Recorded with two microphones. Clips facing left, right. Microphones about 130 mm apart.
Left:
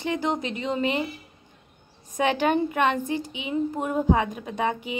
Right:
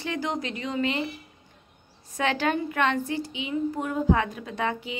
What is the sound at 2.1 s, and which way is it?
A woman's voice, 15° left (ahead or behind).